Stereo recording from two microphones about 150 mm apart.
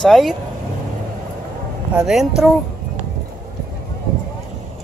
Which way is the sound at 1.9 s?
5° right (ahead or behind).